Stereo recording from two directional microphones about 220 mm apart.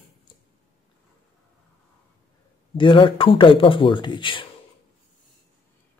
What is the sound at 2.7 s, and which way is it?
Speech, 20° left (ahead or behind).